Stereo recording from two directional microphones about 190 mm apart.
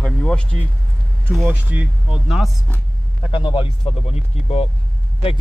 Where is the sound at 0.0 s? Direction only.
5° left (ahead or behind).